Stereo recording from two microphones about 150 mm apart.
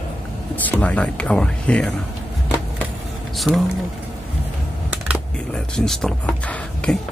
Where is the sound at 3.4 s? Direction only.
Centre (ahead or behind).